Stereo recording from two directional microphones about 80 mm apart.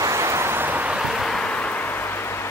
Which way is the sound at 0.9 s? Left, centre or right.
Centre.